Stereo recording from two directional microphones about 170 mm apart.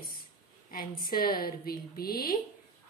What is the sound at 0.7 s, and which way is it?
A woman's voice, 60° left (ahead or behind).